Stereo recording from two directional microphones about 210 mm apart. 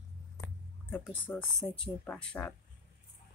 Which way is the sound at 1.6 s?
5° left (ahead or behind).